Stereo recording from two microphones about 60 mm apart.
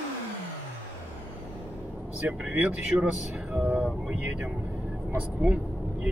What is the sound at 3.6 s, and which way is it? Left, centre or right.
Speech, right.